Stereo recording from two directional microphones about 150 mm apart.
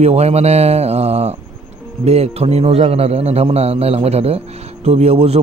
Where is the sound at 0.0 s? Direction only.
45° right (ahead or behind).